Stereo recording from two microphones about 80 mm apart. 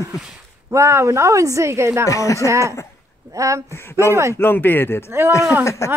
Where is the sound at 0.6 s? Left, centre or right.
Right.